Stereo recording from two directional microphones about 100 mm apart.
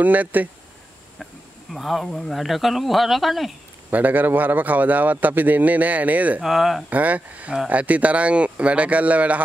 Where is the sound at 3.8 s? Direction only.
15° right (ahead or behind).